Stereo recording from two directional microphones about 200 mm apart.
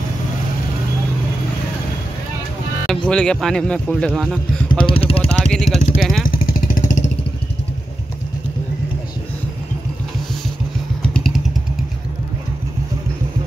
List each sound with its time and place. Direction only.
2.9 s speech: 5° left (ahead or behind)
4.6 s speech: 25° left (ahead or behind)
5.4 s vehicle: centre (ahead or behind)
5.9 s speech: centre (ahead or behind)
6.2 s vehicle: 45° left (ahead or behind)
11.1 s motorcycle: centre (ahead or behind)